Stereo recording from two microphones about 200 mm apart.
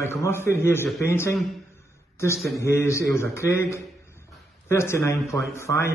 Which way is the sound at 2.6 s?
15° left (ahead or behind).